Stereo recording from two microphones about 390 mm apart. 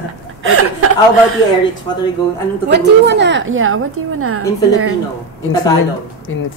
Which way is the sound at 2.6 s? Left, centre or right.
Right.